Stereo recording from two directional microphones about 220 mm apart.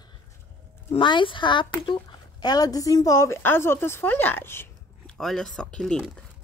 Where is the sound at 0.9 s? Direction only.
20° left (ahead or behind); by 6.3 s centre (ahead or behind).